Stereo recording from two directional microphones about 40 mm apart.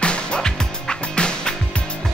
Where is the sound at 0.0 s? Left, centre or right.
Left.